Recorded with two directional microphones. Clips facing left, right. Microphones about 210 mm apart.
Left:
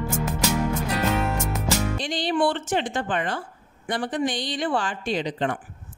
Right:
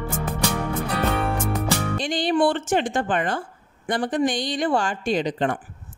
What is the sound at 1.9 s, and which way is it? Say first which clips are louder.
Music: right 3 dB; 50° right (ahead or behind).